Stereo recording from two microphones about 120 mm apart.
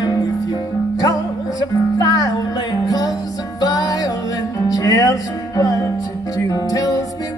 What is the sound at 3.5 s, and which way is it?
Music, 35° left (ahead or behind).